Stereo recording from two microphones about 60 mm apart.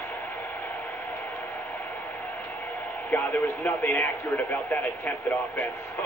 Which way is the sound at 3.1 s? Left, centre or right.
Left.